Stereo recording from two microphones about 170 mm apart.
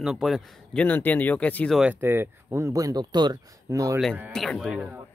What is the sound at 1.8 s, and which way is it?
Speech, 10° right (ahead or behind).